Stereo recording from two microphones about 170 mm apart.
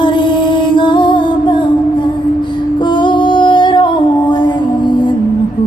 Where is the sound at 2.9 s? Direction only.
30° left (ahead or behind).